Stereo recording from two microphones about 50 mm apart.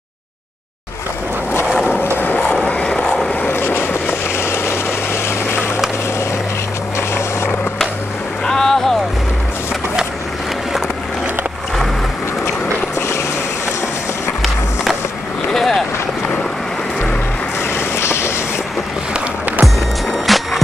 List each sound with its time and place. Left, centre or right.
2.7 s vehicle: centre
3.3 s vehicle: left
8.5 s boat: centre
15.5 s vehicle: centre
17.7 s vehicle: left
19.6 s music: centre